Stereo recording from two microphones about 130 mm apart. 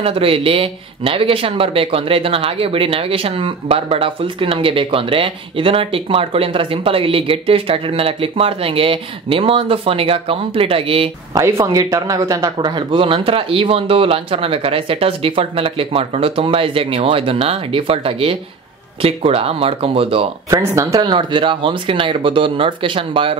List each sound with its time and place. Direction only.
0.0 s speech: 45° right (ahead or behind)
11.3 s speech: 25° right (ahead or behind); by 20.2 s 45° right (ahead or behind)
20.4 s speech: 25° right (ahead or behind); by 23.3 s 40° right (ahead or behind)